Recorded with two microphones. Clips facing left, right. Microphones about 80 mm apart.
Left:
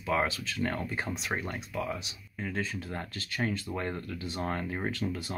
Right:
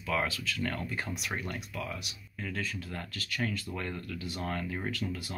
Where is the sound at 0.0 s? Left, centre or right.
Left.